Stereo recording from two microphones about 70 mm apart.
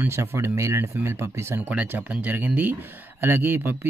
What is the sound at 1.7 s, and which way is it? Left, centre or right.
Speech, right.